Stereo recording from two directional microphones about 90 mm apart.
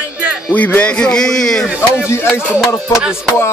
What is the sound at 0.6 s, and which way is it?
Speech, 15° left (ahead or behind).